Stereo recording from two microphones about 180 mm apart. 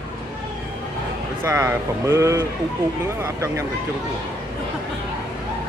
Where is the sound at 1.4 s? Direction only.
15° right (ahead or behind).